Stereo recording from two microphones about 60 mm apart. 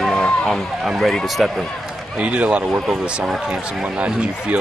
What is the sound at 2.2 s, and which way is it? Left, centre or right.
Speech, right.